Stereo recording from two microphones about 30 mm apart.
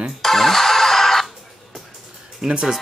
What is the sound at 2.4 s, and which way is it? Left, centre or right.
Speech, right.